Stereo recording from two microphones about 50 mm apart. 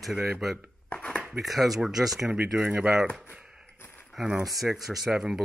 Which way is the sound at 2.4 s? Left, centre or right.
Right.